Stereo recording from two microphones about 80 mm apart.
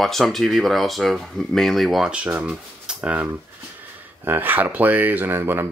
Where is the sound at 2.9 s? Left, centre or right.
Centre.